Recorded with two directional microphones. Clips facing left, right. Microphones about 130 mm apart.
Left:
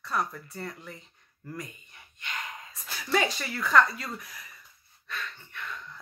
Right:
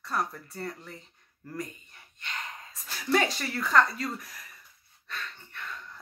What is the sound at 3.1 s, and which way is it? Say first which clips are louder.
Speech: right 1 dB; 35° right (ahead or behind).